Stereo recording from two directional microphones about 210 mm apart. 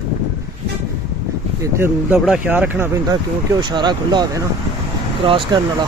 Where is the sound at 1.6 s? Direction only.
10° right (ahead or behind).